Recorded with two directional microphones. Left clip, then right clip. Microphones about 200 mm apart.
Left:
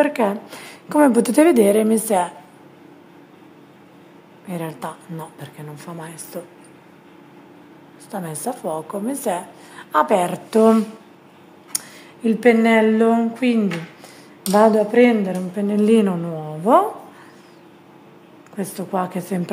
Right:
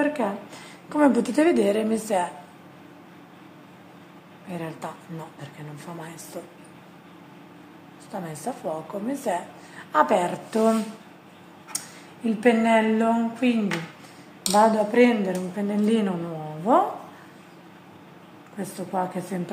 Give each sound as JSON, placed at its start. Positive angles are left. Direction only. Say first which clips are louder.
{"t": 0.0, "sound": "a woman's voice", "louder": "left 7 dB", "side_deg": 45}
{"t": 4.5, "sound": "a woman's voice", "louder": "left 5 dB", "side_deg": 35}
{"t": 5.9, "sound": "a woman's voice", "louder": "left 5 dB", "side_deg": 30}
{"t": 8.1, "sound": "a woman's voice", "louder": "left 5 dB", "side_deg": 35}
{"t": 12.3, "sound": "a woman's voice", "louder": "left 5 dB", "side_deg": 50}
{"t": 18.6, "sound": "a woman's voice", "louder": "left 4 dB", "side_deg": 45}